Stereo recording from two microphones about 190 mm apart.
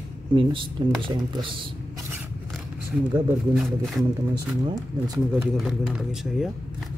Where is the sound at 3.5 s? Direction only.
Centre (ahead or behind).